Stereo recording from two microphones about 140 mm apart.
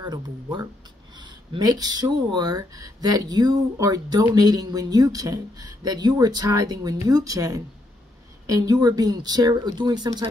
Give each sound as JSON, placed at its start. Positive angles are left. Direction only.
{"t": 0.0, "sound": "speech", "side_deg": -30}